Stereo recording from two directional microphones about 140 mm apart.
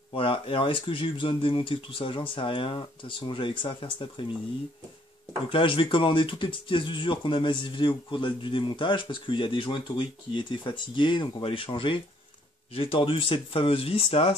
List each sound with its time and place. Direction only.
0.1 s speech: 40° left (ahead or behind)
5.5 s speech: 40° left (ahead or behind)